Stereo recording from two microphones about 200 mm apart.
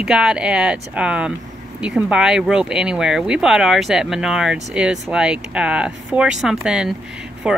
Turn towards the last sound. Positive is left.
turn(degrees=-5)  # may be behind; listen again after turning